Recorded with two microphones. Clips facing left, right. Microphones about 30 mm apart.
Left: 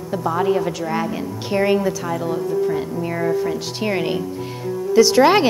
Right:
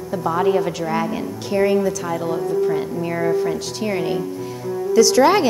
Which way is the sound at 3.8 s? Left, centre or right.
Left.